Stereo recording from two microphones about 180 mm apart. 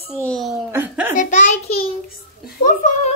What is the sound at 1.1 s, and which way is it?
A child's voice, 40° left (ahead or behind).